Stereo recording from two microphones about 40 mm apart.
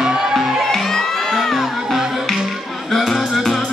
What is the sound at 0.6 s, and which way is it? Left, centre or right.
Music, centre.